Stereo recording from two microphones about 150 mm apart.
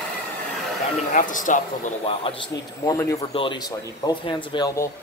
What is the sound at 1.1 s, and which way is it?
Speech, 60° left (ahead or behind).